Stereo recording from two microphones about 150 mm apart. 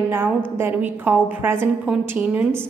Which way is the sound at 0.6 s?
15° right (ahead or behind).